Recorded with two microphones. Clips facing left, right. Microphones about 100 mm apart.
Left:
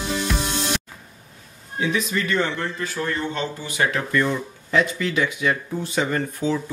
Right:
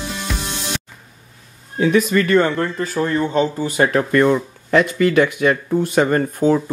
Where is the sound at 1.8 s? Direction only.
55° right (ahead or behind).